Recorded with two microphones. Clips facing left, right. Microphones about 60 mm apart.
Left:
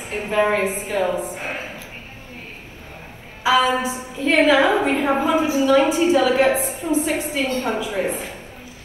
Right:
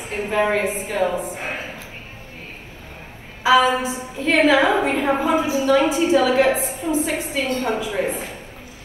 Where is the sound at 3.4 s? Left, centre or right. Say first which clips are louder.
Right 2 dB; right.